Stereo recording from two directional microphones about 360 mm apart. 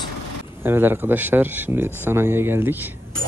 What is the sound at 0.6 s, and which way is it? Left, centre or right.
Speech, centre.